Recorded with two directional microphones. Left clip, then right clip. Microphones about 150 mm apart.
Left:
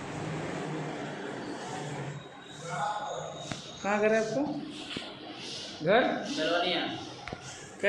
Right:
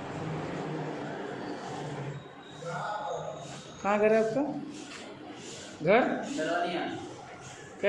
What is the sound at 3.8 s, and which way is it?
Speech, centre (ahead or behind).